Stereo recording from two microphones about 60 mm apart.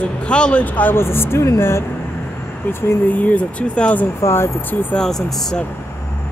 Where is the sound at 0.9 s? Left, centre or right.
Left.